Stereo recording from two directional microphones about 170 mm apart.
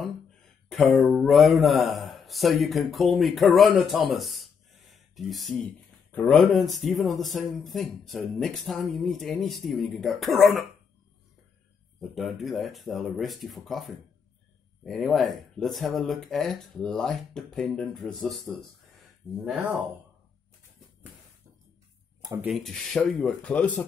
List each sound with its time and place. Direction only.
0.7 s speech: centre (ahead or behind)
12.0 s speech: centre (ahead or behind)
22.4 s speech: centre (ahead or behind)